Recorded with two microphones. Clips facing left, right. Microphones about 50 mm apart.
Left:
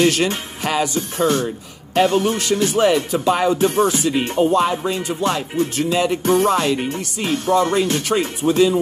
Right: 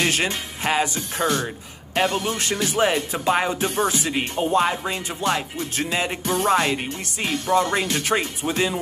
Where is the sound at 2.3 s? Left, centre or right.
Right.